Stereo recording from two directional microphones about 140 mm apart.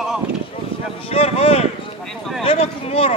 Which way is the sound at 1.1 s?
45° left (ahead or behind).